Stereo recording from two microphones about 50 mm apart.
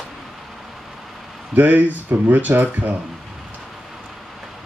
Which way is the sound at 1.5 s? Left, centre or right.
Right.